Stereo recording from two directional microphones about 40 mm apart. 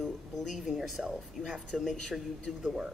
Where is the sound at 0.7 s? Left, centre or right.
Centre.